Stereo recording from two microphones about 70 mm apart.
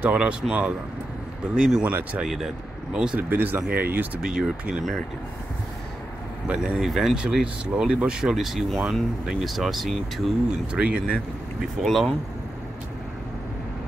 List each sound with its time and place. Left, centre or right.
0.0 s speech: centre
3.2 s speech: right
4.2 s speech: centre
6.4 s speech: centre
6.8 s speech: centre
10.8 s speech: centre
11.6 s speech: centre